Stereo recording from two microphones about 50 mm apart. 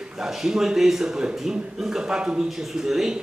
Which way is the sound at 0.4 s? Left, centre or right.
Centre.